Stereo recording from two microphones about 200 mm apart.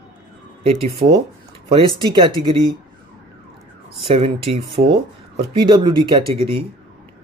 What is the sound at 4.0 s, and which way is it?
Speech, 25° right (ahead or behind).